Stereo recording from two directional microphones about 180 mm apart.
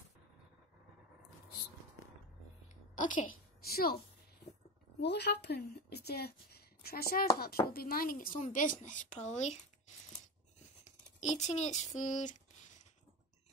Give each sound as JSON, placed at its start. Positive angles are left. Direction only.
{"t": 3.0, "sound": "a woman's voice", "side_deg": 45}
{"t": 5.0, "sound": "a woman's voice", "side_deg": 70}
{"t": 11.1, "sound": "speech", "side_deg": 40}